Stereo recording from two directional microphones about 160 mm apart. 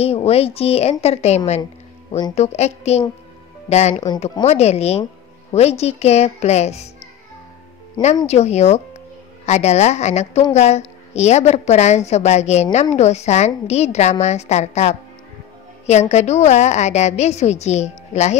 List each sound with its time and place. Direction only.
0.0 s a woman's voice: 40° left (ahead or behind)
3.9 s speech: 25° left (ahead or behind)
4.5 s a woman's voice: 40° left (ahead or behind)
8.0 s speech: 25° left (ahead or behind)
8.3 s a woman's voice: 45° left (ahead or behind)